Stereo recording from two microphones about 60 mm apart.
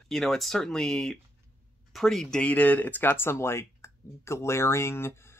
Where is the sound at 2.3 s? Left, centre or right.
Left.